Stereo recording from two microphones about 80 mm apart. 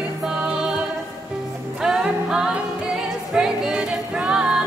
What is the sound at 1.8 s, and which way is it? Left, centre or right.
Music, centre.